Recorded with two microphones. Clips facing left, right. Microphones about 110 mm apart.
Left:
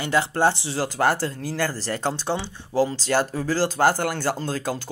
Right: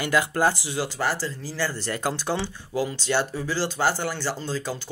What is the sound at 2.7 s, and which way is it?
Speech, 35° left (ahead or behind).